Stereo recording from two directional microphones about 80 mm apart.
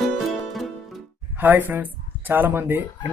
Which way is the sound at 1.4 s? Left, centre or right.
Right.